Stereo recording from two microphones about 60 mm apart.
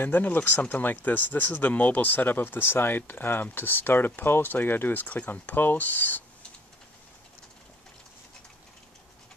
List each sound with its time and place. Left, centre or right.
0.0 s speech: left